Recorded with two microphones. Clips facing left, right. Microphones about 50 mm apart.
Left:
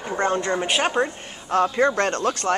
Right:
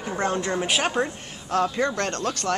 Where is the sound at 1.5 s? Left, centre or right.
Centre.